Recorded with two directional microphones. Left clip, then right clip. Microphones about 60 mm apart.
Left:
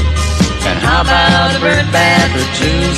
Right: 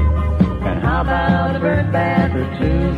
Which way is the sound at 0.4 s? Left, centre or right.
Right.